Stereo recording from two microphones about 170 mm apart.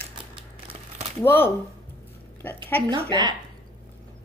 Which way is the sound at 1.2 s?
10° left (ahead or behind).